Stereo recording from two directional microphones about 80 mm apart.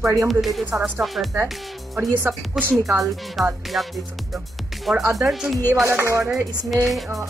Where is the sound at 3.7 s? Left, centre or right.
Centre.